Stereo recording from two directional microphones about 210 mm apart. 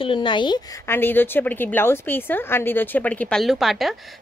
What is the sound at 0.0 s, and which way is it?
Speech, 25° left (ahead or behind).